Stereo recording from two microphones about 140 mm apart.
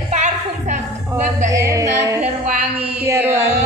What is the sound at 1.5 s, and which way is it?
Music, 25° right (ahead or behind).